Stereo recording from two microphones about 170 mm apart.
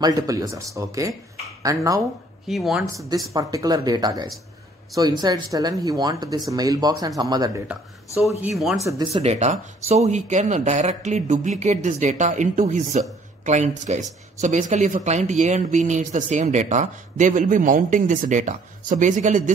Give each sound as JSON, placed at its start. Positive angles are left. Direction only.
{"t": 0.0, "sound": "speech", "side_deg": -20}
{"t": 2.4, "sound": "speech", "side_deg": 0}
{"t": 3.3, "sound": "speech", "side_deg": -20}
{"t": 8.7, "sound": "speech", "side_deg": -20}
{"t": 9.1, "sound": "speech", "side_deg": -40}